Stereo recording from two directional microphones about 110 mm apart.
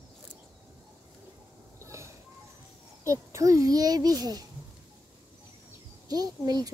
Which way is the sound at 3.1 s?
30° right (ahead or behind).